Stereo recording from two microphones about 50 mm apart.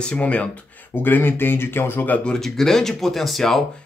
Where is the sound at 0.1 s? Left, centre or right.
Left.